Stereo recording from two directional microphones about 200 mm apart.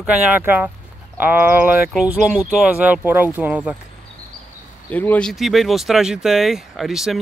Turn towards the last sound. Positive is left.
turn(degrees=0)  # may be behind; listen again after turning